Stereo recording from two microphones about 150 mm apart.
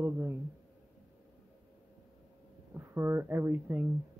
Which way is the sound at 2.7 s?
15° right (ahead or behind).